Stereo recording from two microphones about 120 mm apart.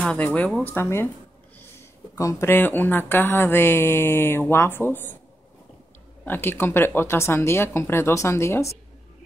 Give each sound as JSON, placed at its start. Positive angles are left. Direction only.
{"t": 0.0, "sound": "speech", "side_deg": 10}
{"t": 6.2, "sound": "speech", "side_deg": 15}